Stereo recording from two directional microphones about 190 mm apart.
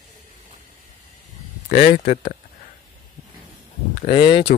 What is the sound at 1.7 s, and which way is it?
Speech, 55° left (ahead or behind).